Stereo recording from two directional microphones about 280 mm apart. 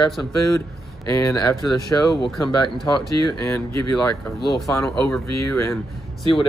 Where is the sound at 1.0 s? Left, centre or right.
Centre.